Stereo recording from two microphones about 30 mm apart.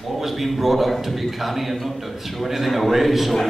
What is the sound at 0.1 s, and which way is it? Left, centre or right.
A man's voice, centre.